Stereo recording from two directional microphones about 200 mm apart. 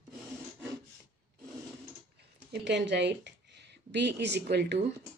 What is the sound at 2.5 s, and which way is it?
Speech, 60° right (ahead or behind).